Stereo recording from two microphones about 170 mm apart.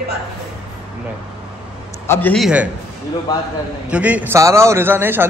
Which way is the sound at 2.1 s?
10° left (ahead or behind).